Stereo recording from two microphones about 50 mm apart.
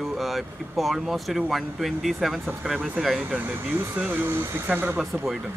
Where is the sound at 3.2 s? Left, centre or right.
Right.